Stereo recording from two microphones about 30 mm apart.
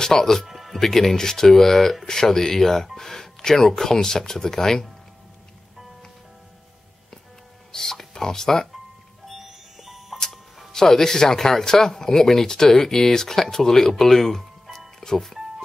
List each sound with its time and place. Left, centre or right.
0.0 s speech: centre
0.5 s music: centre
0.7 s speech: centre
7.7 s speech: centre
9.3 s music: centre
10.7 s speech: centre